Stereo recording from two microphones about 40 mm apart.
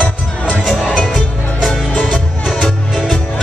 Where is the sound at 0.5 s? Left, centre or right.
Centre.